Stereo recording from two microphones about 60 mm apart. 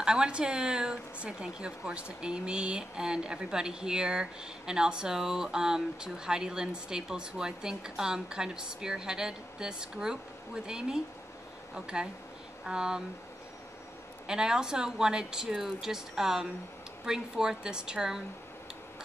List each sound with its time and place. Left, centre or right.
0.0 s speech: centre
14.2 s speech: centre